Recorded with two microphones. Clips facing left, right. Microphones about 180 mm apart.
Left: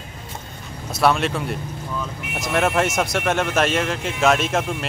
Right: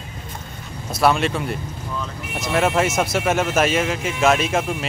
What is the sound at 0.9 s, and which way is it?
Speech, centre (ahead or behind).